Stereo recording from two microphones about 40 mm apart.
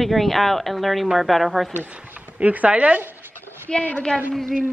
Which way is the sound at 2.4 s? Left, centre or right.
Right.